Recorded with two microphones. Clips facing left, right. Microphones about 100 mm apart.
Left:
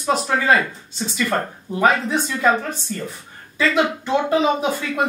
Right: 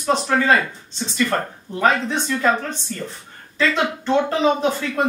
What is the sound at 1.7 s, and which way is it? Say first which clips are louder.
A woman's voice: left 1 dB; 5° left (ahead or behind).